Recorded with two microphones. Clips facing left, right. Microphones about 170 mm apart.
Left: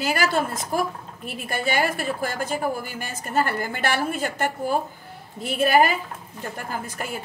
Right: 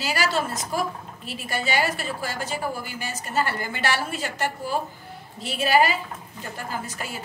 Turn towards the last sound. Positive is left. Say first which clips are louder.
# left 2 dB
turn(degrees=55)  # may be behind; listen again after turning